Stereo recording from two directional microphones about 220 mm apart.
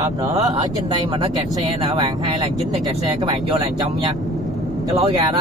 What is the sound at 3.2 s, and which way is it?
Speech, 20° right (ahead or behind).